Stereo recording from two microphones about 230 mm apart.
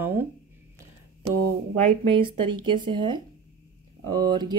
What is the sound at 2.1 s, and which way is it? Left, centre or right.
Speech, right.